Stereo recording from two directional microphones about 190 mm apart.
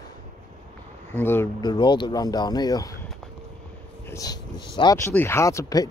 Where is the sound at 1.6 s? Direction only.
25° left (ahead or behind).